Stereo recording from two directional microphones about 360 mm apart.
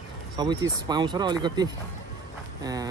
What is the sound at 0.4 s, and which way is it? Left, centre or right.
Speech, centre.